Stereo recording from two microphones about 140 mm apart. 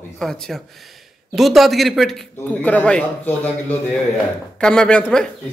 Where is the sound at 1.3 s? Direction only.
Centre (ahead or behind).